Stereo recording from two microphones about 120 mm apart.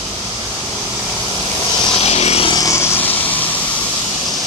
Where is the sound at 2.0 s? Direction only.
60° left (ahead or behind).